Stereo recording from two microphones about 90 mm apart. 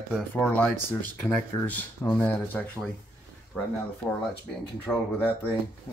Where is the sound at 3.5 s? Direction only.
15° left (ahead or behind).